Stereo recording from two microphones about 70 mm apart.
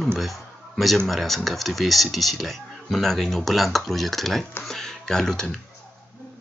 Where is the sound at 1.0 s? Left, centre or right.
Centre.